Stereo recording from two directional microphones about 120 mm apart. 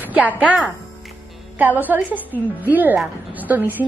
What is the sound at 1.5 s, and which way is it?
A woman's voice, 15° right (ahead or behind).